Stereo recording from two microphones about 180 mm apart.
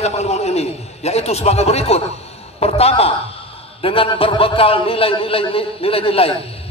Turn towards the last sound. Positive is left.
turn(degrees=30)  # may be behind; listen again after turning